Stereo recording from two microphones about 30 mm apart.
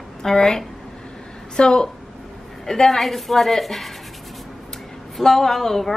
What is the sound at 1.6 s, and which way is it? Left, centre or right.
Speech, left.